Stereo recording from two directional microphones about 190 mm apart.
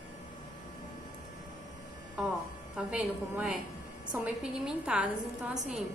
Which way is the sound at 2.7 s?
5° right (ahead or behind).